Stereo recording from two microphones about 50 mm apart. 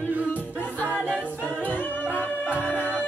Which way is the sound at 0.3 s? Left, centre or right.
Left.